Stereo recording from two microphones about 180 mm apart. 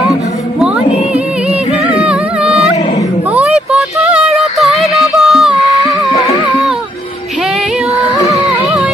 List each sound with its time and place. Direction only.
1.9 s music: 5° right (ahead or behind)
3.7 s music: centre (ahead or behind)
8.2 s music: 20° left (ahead or behind)